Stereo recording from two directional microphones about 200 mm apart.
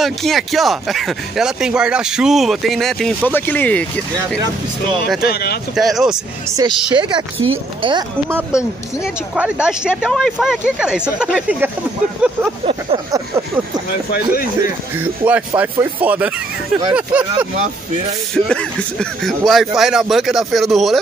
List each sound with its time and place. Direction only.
0.0 s speech: centre (ahead or behind)
5.2 s speech: 50° left (ahead or behind)
5.8 s speech: centre (ahead or behind)
7.0 s speech: 20° right (ahead or behind)
8.3 s speech: 5° right (ahead or behind)
15.2 s speech: 10° right (ahead or behind)
18.3 s speech: 5° left (ahead or behind)